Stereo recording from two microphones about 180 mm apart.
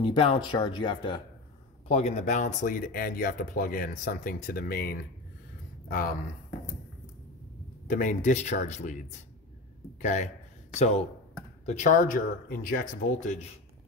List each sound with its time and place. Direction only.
0.0 s speech: 30° left (ahead or behind)
1.9 s speech: 40° left (ahead or behind); by 6.1 s 55° left (ahead or behind)
7.9 s speech: 45° left (ahead or behind)
10.0 s a man's voice: 40° left (ahead or behind)